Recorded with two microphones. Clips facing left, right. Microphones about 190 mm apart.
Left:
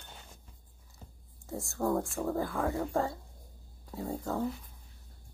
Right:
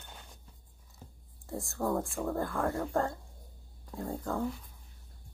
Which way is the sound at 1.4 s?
Centre (ahead or behind).